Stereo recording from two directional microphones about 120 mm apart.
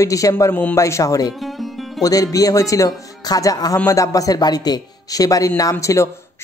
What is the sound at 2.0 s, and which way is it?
A man's voice, 30° left (ahead or behind).